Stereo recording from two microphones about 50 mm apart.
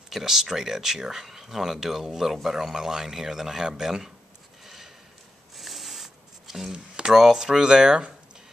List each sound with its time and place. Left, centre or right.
0.1 s speech: centre
4.6 s a sound: centre
6.7 s speech: centre